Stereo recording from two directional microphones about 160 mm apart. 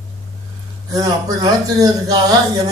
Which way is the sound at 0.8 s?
20° right (ahead or behind).